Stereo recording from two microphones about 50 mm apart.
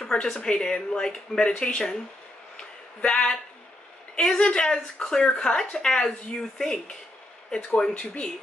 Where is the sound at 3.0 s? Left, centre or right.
Centre.